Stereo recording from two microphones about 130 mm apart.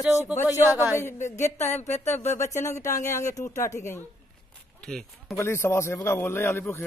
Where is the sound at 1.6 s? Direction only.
60° left (ahead or behind).